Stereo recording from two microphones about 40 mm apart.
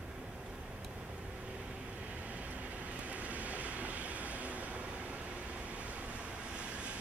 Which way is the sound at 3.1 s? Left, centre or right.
Right.